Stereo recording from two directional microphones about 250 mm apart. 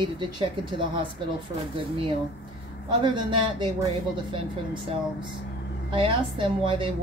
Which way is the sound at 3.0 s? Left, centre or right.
Centre.